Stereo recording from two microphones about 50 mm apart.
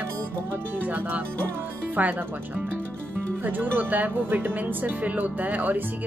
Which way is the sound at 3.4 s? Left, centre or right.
Right.